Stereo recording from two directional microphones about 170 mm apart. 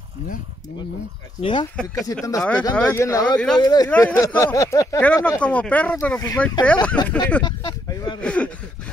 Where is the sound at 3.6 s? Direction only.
25° left (ahead or behind).